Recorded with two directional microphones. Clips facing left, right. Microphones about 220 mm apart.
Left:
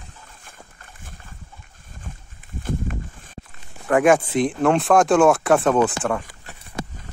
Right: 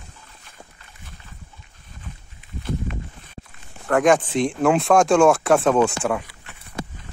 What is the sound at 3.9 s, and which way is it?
Speech, 10° left (ahead or behind).